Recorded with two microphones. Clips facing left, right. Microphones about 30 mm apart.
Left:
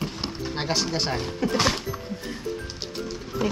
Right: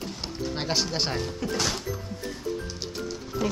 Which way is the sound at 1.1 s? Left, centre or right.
Left.